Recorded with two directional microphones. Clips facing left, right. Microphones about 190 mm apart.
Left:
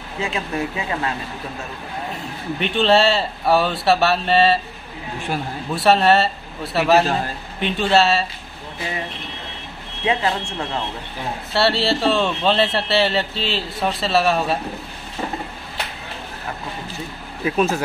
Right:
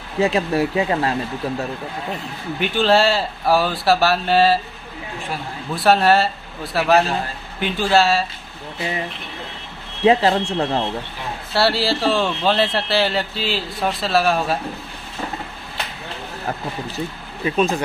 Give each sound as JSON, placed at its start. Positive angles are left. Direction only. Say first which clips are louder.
{"t": 0.2, "sound": "speech", "louder": "right 7 dB", "side_deg": -35}
{"t": 2.6, "sound": "speech", "louder": "even", "side_deg": -5}
{"t": 5.9, "sound": "speech", "louder": "even", "side_deg": 0}
{"t": 10.0, "sound": "speech", "louder": "right 6 dB", "side_deg": -35}
{"t": 11.5, "sound": "speech", "louder": "even", "side_deg": 0}
{"t": 17.4, "sound": "speech", "louder": "even", "side_deg": 5}